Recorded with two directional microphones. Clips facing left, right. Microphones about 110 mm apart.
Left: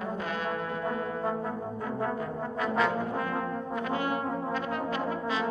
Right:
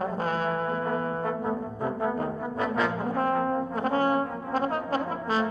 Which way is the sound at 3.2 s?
40° right (ahead or behind).